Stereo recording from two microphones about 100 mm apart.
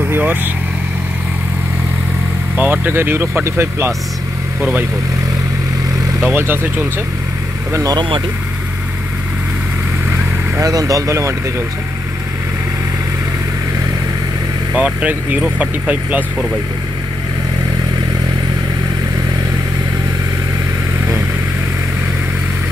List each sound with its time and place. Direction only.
0.0 s speech: 20° right (ahead or behind)
2.5 s speech: 20° right (ahead or behind)
6.3 s speech: 20° right (ahead or behind)
7.7 s speech: 35° right (ahead or behind)
10.6 s speech: 35° right (ahead or behind)
14.7 s speech: 15° right (ahead or behind)